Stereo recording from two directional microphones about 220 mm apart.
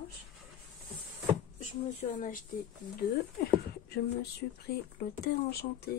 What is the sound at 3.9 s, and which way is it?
Speech, 45° left (ahead or behind).